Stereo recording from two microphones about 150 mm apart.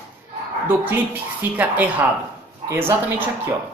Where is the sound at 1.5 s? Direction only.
10° right (ahead or behind).